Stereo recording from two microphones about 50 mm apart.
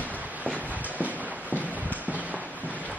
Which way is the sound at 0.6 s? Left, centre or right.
Right.